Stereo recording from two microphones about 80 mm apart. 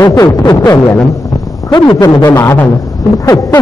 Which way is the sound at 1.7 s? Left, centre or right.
Left.